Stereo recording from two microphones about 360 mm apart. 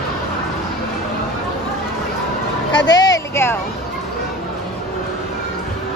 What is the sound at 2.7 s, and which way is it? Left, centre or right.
Speech, left.